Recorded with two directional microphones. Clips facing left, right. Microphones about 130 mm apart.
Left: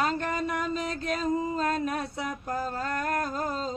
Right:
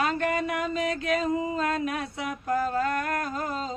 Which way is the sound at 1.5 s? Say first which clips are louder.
Even; 35° left (ahead or behind).